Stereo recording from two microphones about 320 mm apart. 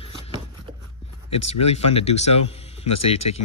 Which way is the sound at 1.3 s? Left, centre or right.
Centre.